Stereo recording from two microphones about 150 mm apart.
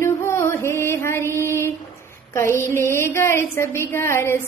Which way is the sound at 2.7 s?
15° left (ahead or behind).